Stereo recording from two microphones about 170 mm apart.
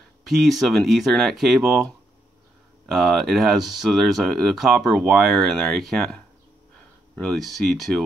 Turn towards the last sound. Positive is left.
turn(degrees=5)  # may be behind; listen again after turning